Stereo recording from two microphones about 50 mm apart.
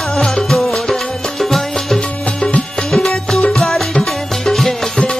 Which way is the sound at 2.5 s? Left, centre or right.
Left.